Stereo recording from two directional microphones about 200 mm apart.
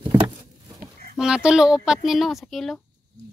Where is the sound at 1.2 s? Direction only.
5° right (ahead or behind).